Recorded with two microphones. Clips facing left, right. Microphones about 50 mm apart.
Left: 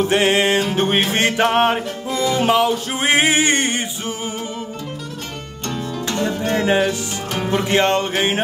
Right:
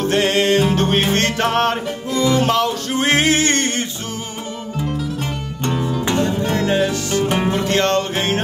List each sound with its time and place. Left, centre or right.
0.0 s music: centre
5.7 s music: centre
6.5 s music: centre